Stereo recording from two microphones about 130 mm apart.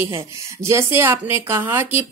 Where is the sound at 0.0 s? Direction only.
20° right (ahead or behind).